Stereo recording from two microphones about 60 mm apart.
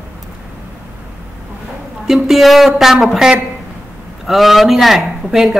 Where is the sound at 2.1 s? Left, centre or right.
Centre.